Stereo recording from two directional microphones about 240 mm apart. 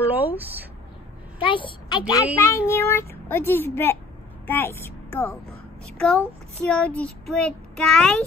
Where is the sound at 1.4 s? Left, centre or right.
Left.